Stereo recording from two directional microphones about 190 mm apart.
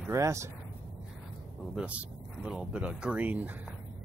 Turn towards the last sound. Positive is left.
turn(degrees=-10)  # may be behind; listen again after turning